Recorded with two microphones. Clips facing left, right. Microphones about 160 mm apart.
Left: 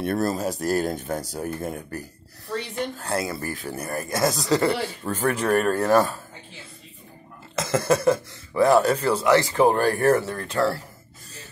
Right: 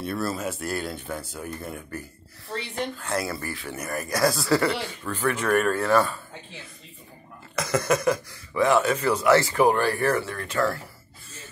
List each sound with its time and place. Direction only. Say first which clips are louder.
0.0 s speech: left 4 dB; 45° left (ahead or behind)
3.2 s speech: left 1 dB; 25° left (ahead or behind)
3.4 s speech: left 3 dB; 45° left (ahead or behind)
3.7 s speech: right 1 dB; 30° left (ahead or behind)
4.6 s speech: left 3 dB; 45° left (ahead or behind)
7.5 s speech: left 2 dB; 25° left (ahead or behind)
9.8 s speech: left 4 dB; 45° left (ahead or behind)